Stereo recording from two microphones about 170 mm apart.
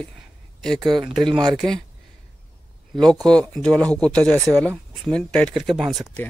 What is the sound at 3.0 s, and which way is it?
Speech, 5° left (ahead or behind).